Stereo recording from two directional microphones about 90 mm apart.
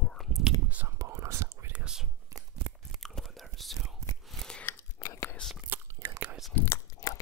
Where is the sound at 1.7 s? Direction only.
10° right (ahead or behind).